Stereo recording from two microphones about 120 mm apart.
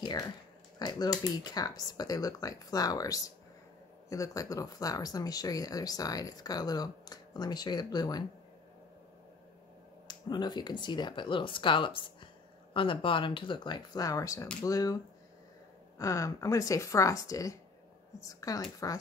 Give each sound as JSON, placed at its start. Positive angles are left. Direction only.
{"t": 0.0, "sound": "a sound", "side_deg": 35}
{"t": 0.7, "sound": "speech", "side_deg": 35}
{"t": 10.0, "sound": "a woman's voice", "side_deg": 35}
{"t": 16.0, "sound": "a woman's voice", "side_deg": 25}